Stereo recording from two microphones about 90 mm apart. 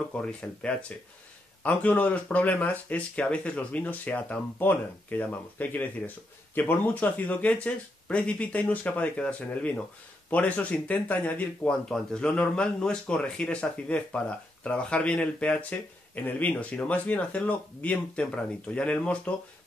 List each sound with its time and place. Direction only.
0.1 s speech: 10° left (ahead or behind)